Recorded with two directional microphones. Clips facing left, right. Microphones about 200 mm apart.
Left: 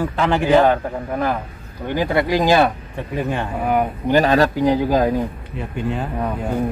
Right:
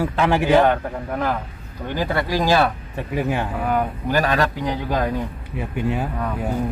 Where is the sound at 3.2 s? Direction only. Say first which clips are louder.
Even; 5° right (ahead or behind).